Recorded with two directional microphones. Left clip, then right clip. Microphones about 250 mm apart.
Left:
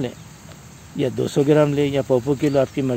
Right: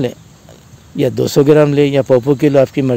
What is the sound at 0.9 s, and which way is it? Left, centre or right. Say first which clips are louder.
Speech: right 8 dB; right.